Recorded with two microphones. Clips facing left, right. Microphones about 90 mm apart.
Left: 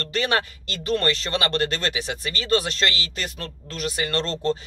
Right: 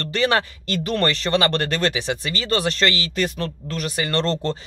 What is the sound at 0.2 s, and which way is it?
Speech, 30° right (ahead or behind).